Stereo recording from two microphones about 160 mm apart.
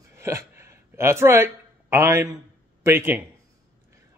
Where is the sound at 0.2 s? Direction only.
15° right (ahead or behind).